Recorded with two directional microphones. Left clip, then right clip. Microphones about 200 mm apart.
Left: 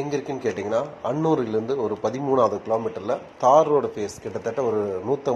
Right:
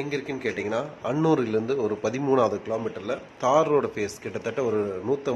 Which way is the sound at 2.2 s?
30° right (ahead or behind).